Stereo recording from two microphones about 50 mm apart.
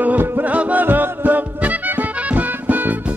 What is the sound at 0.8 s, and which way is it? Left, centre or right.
Music, right.